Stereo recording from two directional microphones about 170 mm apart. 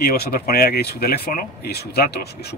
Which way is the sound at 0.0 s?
65° left (ahead or behind).